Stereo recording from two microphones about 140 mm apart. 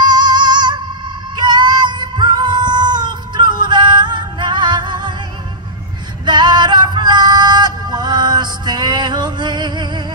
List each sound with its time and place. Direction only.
0.0 s music: 30° right (ahead or behind)
6.2 s female singing: 30° right (ahead or behind)